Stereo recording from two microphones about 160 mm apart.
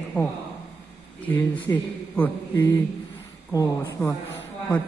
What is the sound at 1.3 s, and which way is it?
Speech, 10° left (ahead or behind).